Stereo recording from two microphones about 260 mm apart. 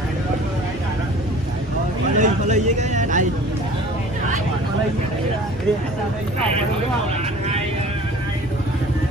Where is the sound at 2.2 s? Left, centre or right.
Right.